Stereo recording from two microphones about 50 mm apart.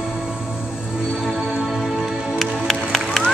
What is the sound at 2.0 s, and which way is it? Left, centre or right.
Music, centre.